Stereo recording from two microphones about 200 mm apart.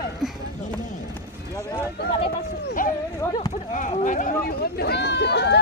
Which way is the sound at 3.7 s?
40° left (ahead or behind).